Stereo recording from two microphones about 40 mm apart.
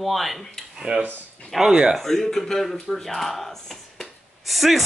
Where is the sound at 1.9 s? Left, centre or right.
Centre.